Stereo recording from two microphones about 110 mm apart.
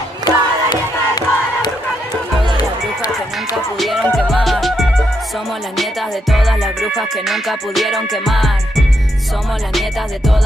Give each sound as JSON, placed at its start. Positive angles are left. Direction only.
{"t": 0.2, "sound": "crowd", "side_deg": 40}
{"t": 3.7, "sound": "music", "side_deg": 0}